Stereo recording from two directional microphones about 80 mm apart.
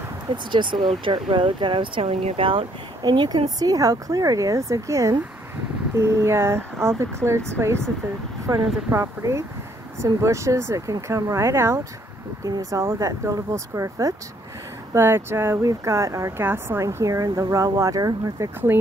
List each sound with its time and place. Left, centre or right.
0.5 s speech: right
8.9 s speech: right
12.4 s speech: right
12.8 s speech: right
15.0 s speech: right
16.3 s speech: right
18.7 s speech: right